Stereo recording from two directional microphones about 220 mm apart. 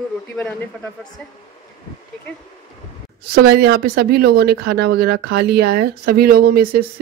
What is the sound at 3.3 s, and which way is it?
Speech, 45° right (ahead or behind).